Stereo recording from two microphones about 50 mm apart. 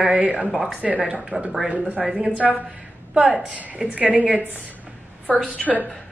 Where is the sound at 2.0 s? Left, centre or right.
Centre.